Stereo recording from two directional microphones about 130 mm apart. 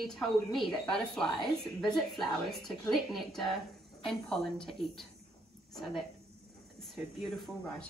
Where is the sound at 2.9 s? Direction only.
Centre (ahead or behind).